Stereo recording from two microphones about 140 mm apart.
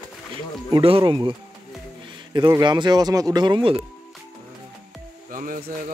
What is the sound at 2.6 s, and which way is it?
Speech, 30° right (ahead or behind).